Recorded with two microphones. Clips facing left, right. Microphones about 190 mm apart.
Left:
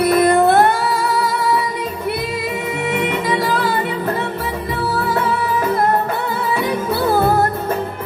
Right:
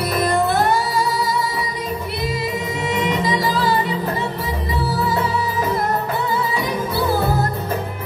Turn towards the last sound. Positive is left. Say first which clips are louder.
# left 4 dB
turn(degrees=55)  # may be behind; listen again after turning